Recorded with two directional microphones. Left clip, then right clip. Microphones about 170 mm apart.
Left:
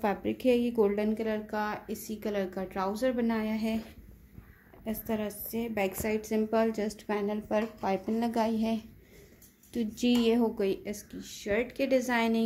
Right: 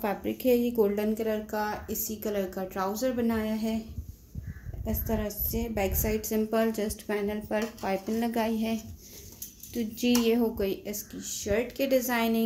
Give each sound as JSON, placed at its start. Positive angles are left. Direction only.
{"t": 0.0, "sound": "a woman's voice", "side_deg": 20}
{"t": 4.8, "sound": "a woman's voice", "side_deg": 10}